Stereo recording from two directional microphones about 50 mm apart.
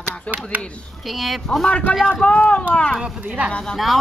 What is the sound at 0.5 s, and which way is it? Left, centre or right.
Speech, right.